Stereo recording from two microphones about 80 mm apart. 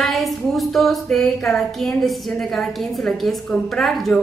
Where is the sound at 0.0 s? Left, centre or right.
Centre.